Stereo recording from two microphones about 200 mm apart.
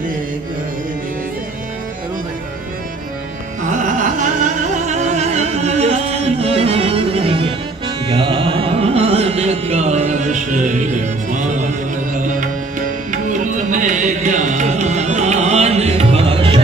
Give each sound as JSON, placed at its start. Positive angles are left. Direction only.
{"t": 3.6, "sound": "music", "side_deg": -40}
{"t": 8.1, "sound": "carnatic music", "side_deg": -25}
{"t": 12.1, "sound": "music", "side_deg": -40}